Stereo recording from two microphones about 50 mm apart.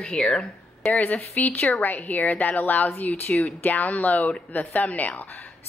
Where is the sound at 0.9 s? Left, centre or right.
Left.